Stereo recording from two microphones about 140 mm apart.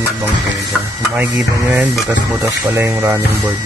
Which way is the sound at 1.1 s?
10° right (ahead or behind).